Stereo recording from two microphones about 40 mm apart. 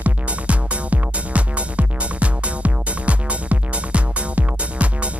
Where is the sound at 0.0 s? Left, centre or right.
Right.